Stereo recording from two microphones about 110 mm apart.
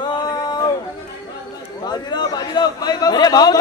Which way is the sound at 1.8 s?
40° left (ahead or behind).